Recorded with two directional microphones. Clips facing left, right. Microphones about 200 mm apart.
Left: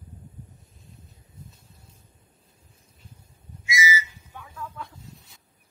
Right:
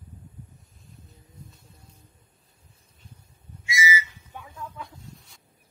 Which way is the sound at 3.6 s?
30° right (ahead or behind).